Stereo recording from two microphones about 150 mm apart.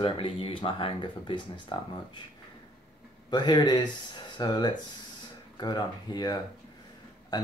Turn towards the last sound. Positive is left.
turn(degrees=25)  # may be behind; listen again after turning